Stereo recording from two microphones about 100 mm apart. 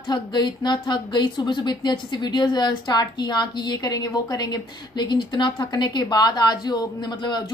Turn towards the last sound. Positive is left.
turn(degrees=45)  # may be behind; listen again after turning